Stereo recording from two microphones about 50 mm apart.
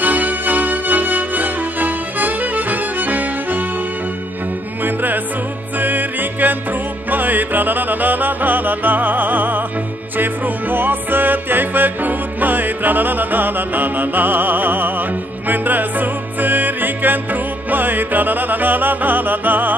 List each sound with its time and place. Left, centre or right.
0.0 s music: right
4.8 s music: right